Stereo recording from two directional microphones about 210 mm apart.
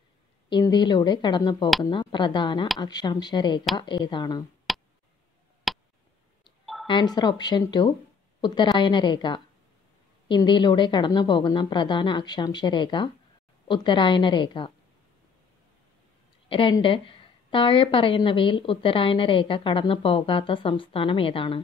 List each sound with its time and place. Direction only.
0.5 s a woman's voice: 20° left (ahead or behind)
4.7 s tick: centre (ahead or behind)
5.7 s a sound: centre (ahead or behind)
6.4 s telephone dialing: centre (ahead or behind)
6.9 s a woman's voice: 20° left (ahead or behind)
16.4 s a woman's voice: 25° left (ahead or behind)